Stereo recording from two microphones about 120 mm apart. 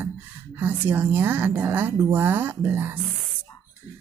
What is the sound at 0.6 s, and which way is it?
A woman's voice, 15° right (ahead or behind).